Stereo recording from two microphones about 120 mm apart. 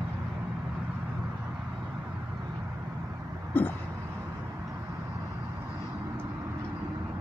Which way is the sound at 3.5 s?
15° left (ahead or behind).